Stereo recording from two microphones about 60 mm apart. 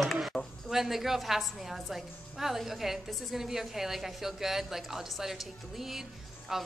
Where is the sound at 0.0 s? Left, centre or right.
Centre.